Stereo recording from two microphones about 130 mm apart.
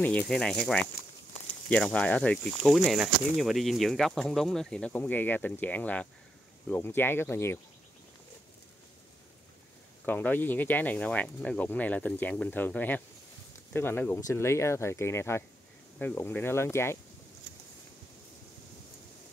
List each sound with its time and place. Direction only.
0.0 s speech: 10° left (ahead or behind)
10.0 s speech: 15° left (ahead or behind)